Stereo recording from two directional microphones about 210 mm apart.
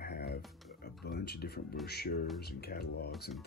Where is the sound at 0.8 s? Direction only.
50° left (ahead or behind).